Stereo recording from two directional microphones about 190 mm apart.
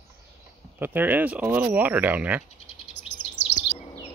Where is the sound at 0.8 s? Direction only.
10° right (ahead or behind).